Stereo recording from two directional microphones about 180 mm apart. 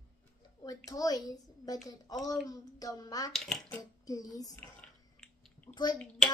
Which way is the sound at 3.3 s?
5° left (ahead or behind).